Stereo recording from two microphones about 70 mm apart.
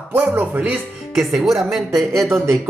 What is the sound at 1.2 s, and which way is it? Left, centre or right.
Speech, centre.